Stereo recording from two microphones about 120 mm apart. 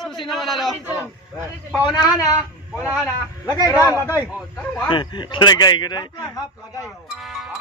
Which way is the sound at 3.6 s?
25° left (ahead or behind).